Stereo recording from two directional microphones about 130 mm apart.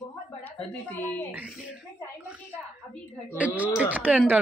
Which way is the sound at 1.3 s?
5° right (ahead or behind).